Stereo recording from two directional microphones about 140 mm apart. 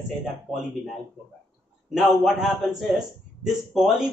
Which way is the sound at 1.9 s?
5° right (ahead or behind).